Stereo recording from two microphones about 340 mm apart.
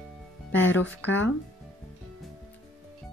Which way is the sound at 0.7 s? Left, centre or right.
Left.